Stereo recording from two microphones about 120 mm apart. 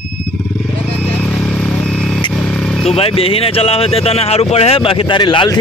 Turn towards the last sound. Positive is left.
turn(degrees=45)  # may be behind; listen again after turning